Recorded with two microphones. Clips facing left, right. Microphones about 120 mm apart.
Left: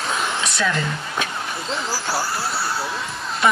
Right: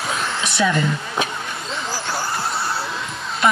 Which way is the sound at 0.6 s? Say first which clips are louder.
Right 6 dB; 15° right (ahead or behind).